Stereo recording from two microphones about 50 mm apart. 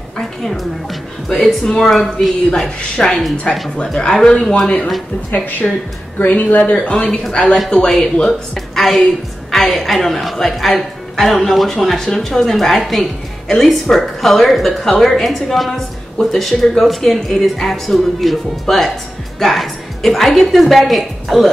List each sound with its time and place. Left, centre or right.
0.4 s a woman's voice: centre
2.8 s speech: left
5.3 s speech: left
6.6 s speech: left
7.9 s a woman's voice: centre